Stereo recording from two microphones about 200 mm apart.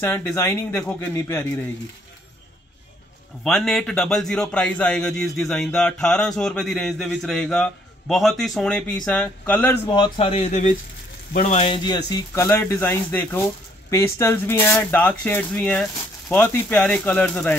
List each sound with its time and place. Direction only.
0.0 s speech: 10° left (ahead or behind)
3.4 s a man's voice: centre (ahead or behind)
9.9 s speech: 25° left (ahead or behind); by 17.6 s 10° left (ahead or behind)